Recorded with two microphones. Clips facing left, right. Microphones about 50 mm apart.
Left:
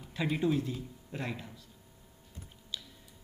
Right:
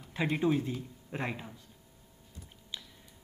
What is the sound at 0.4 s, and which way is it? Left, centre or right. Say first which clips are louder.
A man's voice: right 1 dB; centre.